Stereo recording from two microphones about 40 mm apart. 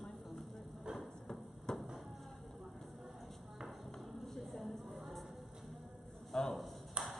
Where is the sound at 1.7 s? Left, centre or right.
Centre.